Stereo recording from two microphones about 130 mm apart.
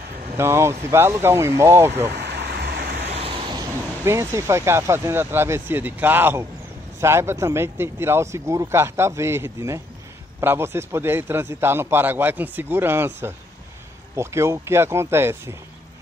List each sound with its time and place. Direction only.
0.4 s speech: 20° right (ahead or behind)
3.2 s a sound: 45° right (ahead or behind)
3.5 s a man's voice: 20° right (ahead or behind)